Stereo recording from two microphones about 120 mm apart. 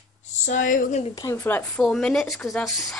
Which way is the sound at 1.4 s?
15° left (ahead or behind).